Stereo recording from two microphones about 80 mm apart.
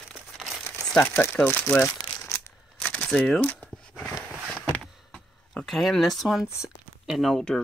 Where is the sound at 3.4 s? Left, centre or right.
Centre.